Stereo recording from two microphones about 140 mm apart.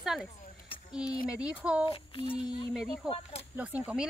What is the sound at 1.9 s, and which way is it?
Speech, 40° left (ahead or behind).